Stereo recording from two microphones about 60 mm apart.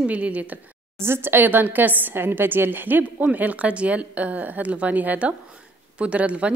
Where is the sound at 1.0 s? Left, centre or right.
Right.